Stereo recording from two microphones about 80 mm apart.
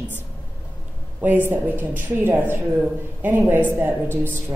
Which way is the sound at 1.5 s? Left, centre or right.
Right.